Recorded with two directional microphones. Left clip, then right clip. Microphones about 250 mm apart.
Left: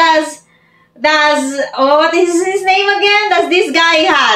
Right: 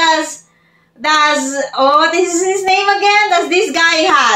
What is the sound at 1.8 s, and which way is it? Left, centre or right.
A woman's voice, centre.